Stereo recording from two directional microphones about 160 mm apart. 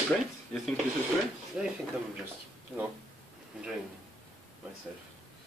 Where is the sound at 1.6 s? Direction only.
5° right (ahead or behind).